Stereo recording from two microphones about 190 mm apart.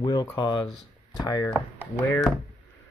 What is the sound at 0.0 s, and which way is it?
Speech, 20° left (ahead or behind).